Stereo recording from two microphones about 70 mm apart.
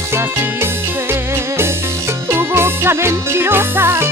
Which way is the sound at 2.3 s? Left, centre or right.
Right.